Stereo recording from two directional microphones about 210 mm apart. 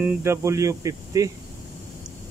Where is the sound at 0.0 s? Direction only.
10° right (ahead or behind).